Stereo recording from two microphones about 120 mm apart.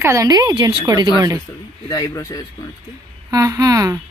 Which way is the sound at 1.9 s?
30° left (ahead or behind).